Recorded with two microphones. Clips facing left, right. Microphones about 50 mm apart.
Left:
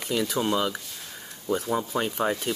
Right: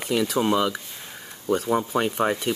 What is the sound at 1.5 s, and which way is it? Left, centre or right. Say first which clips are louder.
Speech: right 4 dB; right.